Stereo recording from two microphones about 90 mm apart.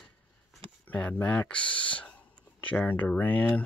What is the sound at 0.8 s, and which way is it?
Speech, 15° left (ahead or behind).